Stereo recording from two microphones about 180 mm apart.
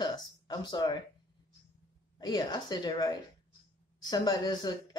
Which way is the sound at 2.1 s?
25° left (ahead or behind).